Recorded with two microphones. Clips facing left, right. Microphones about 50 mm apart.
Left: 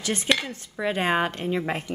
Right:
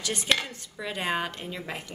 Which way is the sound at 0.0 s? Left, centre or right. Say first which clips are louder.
Left 4 dB; left.